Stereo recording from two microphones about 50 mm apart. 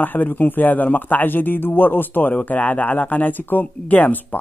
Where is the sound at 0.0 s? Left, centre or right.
Left.